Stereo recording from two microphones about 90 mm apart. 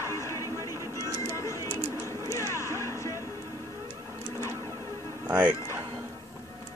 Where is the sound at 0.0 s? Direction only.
35° left (ahead or behind).